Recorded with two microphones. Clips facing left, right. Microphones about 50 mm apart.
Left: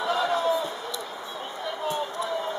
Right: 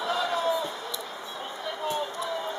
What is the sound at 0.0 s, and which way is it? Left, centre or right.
Basketball bounce, centre.